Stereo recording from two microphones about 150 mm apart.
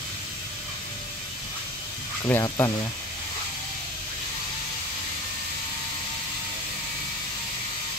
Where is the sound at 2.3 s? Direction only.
15° left (ahead or behind).